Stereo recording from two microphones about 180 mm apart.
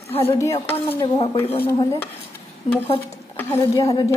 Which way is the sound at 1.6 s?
15° left (ahead or behind).